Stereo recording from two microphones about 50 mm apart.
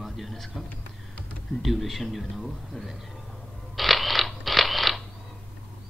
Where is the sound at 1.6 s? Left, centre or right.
Centre.